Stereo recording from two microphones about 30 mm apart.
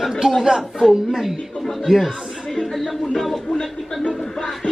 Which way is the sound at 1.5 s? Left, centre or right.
Centre.